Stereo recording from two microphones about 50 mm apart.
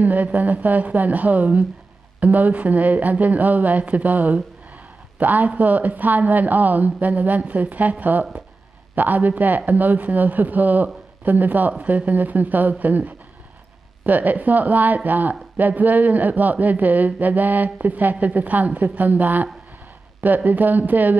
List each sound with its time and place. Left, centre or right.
0.0 s speech: right